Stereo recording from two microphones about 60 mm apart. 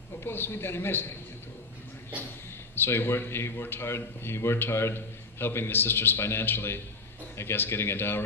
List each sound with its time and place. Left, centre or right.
0.2 s a man's voice: left
2.7 s a man's voice: left